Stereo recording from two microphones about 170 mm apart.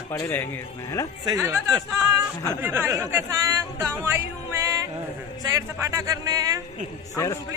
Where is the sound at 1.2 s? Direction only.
20° right (ahead or behind).